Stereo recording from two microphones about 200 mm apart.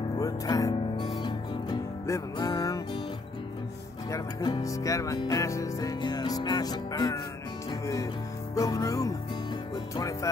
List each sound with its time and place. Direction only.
0.2 s music: 15° left (ahead or behind)
4.1 s music: 20° left (ahead or behind)